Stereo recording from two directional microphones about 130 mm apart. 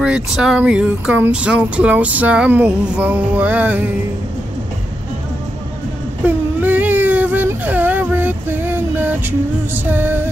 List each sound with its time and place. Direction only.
0.0 s speech: 5° right (ahead or behind)
6.2 s a sound: 15° right (ahead or behind)
9.8 s speech: 15° right (ahead or behind)